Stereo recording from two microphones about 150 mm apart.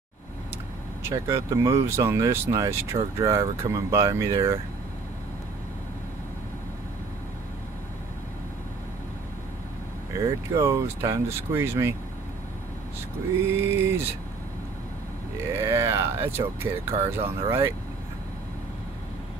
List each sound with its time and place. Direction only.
1.0 s speech: 15° right (ahead or behind)
10.1 s speech: 20° right (ahead or behind)
13.5 s speech: 15° right (ahead or behind)
15.5 s speech: 15° right (ahead or behind)